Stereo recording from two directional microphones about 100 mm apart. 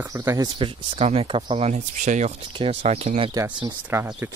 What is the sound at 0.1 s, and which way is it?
Speech, 30° right (ahead or behind).